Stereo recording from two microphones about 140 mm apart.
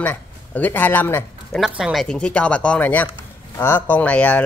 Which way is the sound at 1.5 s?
5° right (ahead or behind).